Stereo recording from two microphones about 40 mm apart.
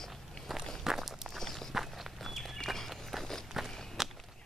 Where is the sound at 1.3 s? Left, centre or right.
Centre.